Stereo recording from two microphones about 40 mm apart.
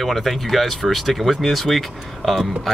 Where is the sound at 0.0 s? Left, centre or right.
Centre.